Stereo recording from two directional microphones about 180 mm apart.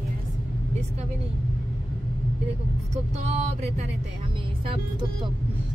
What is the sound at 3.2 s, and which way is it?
Speech, 35° right (ahead or behind).